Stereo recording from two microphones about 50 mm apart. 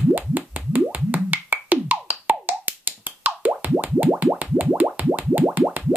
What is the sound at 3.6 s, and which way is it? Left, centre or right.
Plop, right.